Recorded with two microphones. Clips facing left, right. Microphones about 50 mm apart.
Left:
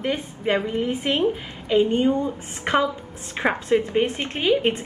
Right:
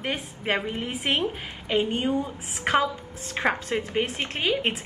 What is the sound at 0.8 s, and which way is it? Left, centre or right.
A woman's voice, right.